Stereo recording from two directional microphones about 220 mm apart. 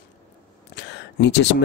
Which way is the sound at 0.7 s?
50° left (ahead or behind).